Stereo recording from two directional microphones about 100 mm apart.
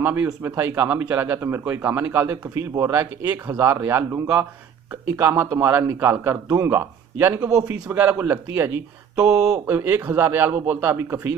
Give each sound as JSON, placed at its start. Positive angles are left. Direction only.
{"t": 0.0, "sound": "a man's voice", "side_deg": -20}